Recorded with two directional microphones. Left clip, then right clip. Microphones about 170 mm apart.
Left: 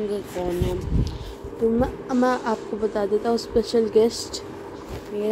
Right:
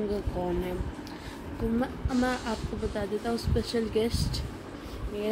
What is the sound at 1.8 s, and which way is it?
Speech, 5° left (ahead or behind).